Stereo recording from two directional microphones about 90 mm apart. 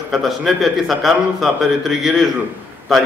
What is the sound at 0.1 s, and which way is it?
A man's voice, centre (ahead or behind).